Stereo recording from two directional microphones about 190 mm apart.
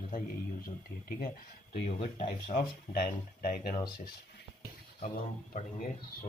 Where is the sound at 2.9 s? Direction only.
55° left (ahead or behind).